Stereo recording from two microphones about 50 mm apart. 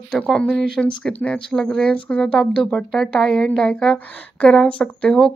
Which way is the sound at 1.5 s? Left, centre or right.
Centre.